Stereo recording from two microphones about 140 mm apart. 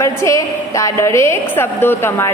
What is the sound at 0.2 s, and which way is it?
A woman's voice, 20° left (ahead or behind).